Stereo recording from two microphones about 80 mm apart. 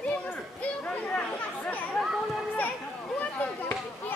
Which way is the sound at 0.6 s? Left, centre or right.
Centre.